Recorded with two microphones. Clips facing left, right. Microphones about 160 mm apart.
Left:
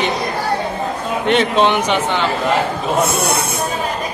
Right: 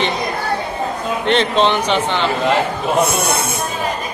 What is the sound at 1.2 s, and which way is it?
A man's voice, 10° left (ahead or behind).